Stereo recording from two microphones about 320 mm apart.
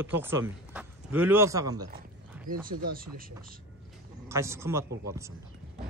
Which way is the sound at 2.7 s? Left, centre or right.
Right.